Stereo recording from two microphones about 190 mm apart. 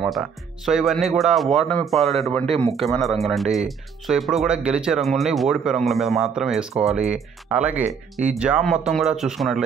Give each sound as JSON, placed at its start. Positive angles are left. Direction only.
{"t": 0.0, "sound": "speech", "side_deg": 0}
{"t": 2.4, "sound": "a man's voice", "side_deg": -30}
{"t": 2.7, "sound": "speech", "side_deg": 0}